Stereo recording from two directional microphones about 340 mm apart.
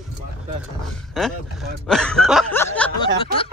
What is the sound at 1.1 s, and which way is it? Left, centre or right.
Speech, centre.